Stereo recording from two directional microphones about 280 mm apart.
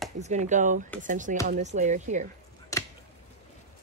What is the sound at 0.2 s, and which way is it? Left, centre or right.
Speech, right.